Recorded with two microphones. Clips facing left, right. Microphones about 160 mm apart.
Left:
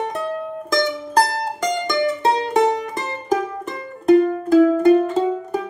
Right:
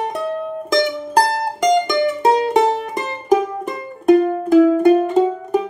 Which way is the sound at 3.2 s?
15° right (ahead or behind).